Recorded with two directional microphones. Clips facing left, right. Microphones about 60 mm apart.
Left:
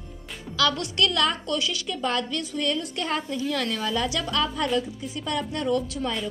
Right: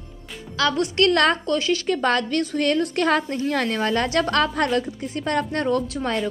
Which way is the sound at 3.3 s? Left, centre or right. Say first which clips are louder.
Right 4 dB; right.